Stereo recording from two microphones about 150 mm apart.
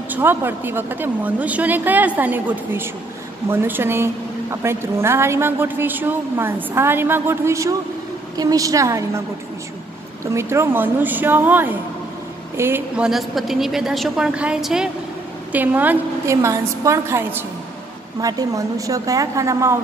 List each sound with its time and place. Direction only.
0.1 s a woman's voice: 15° right (ahead or behind)
10.2 s a woman's voice: 20° right (ahead or behind)